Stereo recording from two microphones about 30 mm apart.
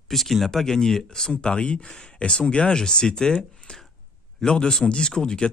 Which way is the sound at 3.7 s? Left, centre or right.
Left.